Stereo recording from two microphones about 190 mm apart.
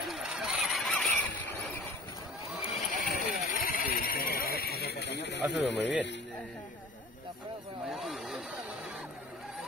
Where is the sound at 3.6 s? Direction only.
50° left (ahead or behind); by 5.9 s 65° left (ahead or behind).